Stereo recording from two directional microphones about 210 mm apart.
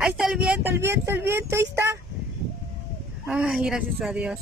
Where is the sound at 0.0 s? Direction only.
5° right (ahead or behind).